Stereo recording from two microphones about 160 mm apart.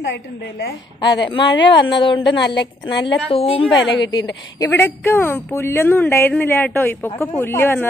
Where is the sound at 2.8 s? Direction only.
30° left (ahead or behind).